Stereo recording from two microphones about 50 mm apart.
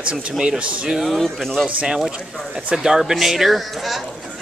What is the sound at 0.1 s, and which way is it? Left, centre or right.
Speech, centre.